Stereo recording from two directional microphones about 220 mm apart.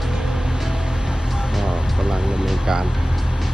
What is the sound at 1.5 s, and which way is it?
Music, centre (ahead or behind).